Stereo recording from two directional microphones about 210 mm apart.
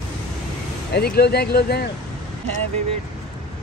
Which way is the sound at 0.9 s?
50° left (ahead or behind).